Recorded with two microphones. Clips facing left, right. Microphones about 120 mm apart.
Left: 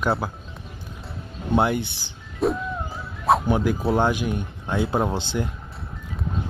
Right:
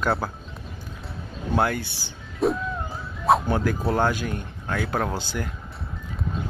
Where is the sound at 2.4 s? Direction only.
Centre (ahead or behind).